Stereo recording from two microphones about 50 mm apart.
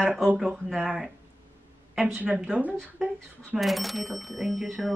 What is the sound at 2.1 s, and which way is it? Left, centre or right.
Speech, right.